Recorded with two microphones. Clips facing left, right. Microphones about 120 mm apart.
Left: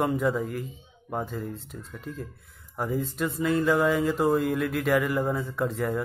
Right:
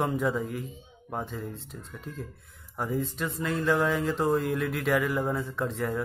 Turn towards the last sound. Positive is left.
turn(degrees=0)  # may be behind; listen again after turning